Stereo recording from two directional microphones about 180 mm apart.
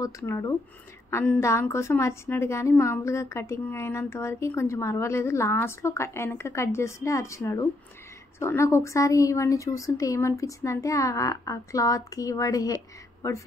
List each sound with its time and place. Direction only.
0.2 s a woman's voice: 15° left (ahead or behind)